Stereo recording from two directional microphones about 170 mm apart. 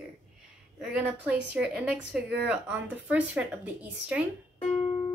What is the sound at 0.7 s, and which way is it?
Speech, 5° right (ahead or behind).